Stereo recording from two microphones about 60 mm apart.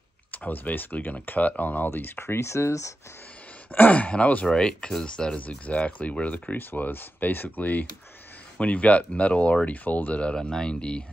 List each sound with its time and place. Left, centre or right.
0.3 s speech: left
1.9 s speech: left
3.7 s speech: left
4.5 s speech: centre